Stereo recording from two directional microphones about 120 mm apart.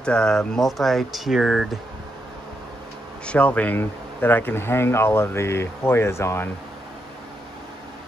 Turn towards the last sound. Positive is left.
turn(degrees=20)  # may be behind; listen again after turning